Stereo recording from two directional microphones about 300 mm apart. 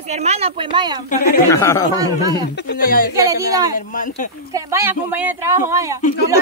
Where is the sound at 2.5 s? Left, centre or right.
Left.